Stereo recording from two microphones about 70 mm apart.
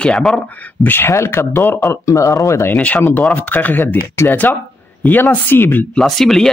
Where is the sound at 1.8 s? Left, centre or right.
Left.